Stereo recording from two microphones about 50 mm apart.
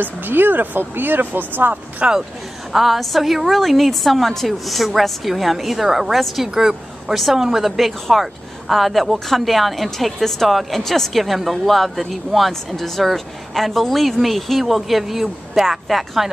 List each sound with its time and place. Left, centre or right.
0.0 s speech: right
2.0 s speech: right
2.7 s speech: centre